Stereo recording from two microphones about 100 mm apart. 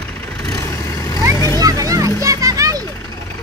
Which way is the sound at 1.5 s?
35° right (ahead or behind).